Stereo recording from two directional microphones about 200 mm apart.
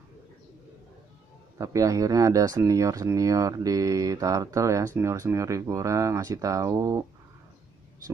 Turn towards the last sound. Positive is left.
turn(degrees=-15)  # may be behind; listen again after turning